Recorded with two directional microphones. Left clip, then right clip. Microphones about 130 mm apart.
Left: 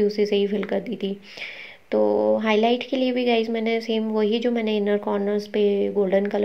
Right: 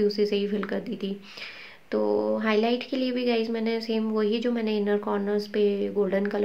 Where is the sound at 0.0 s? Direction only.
15° left (ahead or behind).